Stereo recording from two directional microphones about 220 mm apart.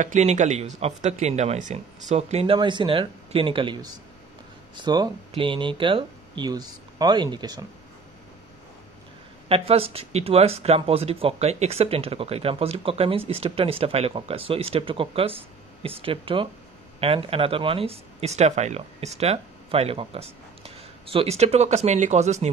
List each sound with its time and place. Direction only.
0.0 s speech: 30° right (ahead or behind)
9.5 s speech: 25° right (ahead or behind)